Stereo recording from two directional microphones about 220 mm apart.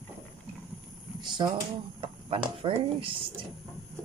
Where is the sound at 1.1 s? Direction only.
20° right (ahead or behind).